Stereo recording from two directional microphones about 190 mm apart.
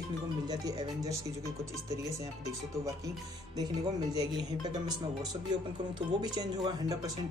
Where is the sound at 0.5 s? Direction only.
20° right (ahead or behind).